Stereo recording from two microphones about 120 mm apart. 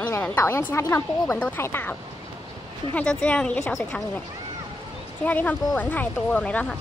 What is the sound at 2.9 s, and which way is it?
Speech, 10° left (ahead or behind).